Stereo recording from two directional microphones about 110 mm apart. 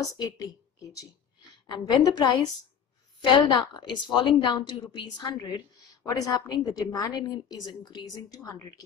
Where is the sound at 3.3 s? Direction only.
40° left (ahead or behind).